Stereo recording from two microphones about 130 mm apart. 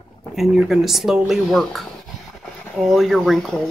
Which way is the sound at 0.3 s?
Centre (ahead or behind).